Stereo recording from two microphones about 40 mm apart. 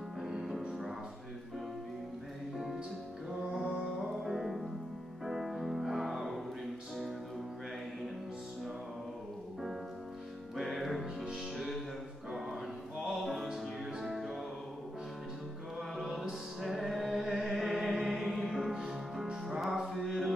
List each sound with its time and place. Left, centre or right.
0.2 s music: centre
4.2 s music: centre
10.5 s music: centre
12.3 s a sound: centre
13.0 s music: centre
13.5 s music: centre
16.0 s music: centre
17.8 s chant: centre
18.2 s music: centre